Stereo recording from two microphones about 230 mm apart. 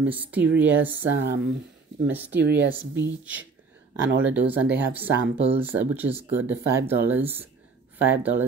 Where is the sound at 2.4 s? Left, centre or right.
Right.